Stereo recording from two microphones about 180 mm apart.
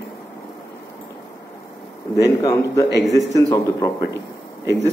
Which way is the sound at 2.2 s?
20° left (ahead or behind).